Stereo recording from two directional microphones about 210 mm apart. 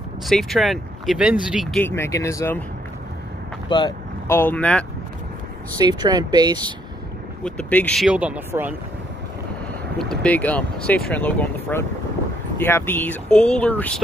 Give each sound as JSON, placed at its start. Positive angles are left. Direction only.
{"t": 0.3, "sound": "speech", "side_deg": 0}
{"t": 1.8, "sound": "speech", "side_deg": 10}
{"t": 3.6, "sound": "speech", "side_deg": 20}
{"t": 4.3, "sound": "speech", "side_deg": 10}
{"t": 5.8, "sound": "speech", "side_deg": -20}
{"t": 7.4, "sound": "speech", "side_deg": 5}
{"t": 9.9, "sound": "speech", "side_deg": 5}